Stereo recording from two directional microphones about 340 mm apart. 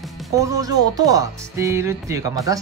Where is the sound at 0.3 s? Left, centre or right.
Centre.